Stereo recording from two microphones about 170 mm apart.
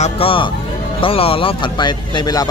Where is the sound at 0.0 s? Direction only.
30° left (ahead or behind).